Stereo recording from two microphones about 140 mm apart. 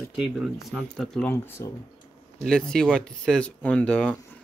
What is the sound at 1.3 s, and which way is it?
Speech, 20° left (ahead or behind).